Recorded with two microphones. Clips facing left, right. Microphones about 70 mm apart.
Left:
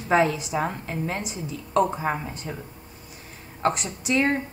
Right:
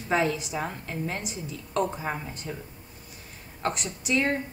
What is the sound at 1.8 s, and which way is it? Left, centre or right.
Speech, left.